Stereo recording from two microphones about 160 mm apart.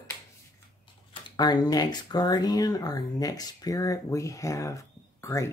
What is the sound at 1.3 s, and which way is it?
Speech, 25° left (ahead or behind).